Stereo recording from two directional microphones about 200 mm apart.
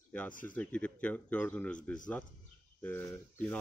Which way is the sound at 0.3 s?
40° left (ahead or behind).